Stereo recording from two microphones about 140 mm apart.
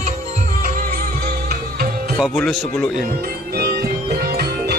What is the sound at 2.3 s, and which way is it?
Speech, 10° left (ahead or behind).